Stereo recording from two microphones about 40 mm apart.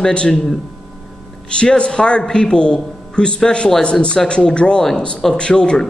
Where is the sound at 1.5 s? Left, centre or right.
Left.